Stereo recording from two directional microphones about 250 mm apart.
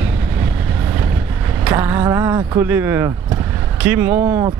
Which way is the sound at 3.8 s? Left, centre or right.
Centre.